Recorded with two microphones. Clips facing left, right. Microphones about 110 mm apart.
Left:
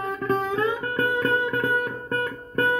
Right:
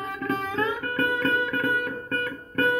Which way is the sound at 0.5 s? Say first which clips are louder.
Left 2 dB; 20° left (ahead or behind).